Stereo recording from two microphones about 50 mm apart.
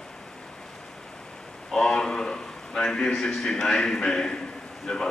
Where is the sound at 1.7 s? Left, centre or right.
Centre.